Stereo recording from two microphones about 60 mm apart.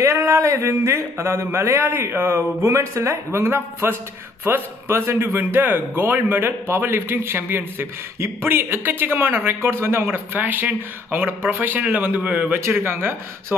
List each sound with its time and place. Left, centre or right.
0.0 s a sound: right
4.5 s speech: right
12.5 s speech: right